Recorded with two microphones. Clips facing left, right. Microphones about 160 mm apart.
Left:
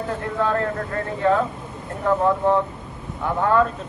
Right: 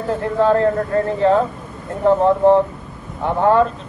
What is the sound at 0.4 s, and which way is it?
A man's voice, 30° right (ahead or behind).